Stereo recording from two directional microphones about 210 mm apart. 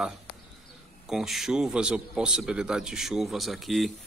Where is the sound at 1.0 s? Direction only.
Centre (ahead or behind).